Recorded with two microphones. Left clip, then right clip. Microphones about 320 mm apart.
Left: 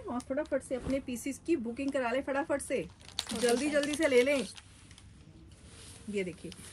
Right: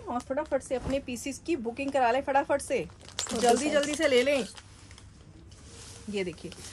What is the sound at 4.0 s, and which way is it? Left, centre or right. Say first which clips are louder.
Speech: right 1 dB; centre.